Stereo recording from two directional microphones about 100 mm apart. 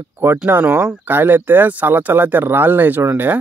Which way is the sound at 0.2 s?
25° right (ahead or behind).